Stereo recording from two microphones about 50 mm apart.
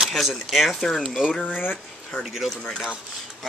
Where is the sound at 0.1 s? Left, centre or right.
Centre.